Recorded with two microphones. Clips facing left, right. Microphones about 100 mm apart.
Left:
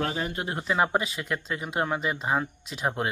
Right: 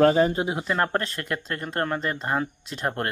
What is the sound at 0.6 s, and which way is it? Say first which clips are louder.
Speech: even; 5° left (ahead or behind).